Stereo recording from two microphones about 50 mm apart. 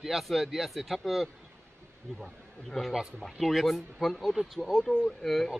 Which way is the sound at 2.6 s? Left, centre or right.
Centre.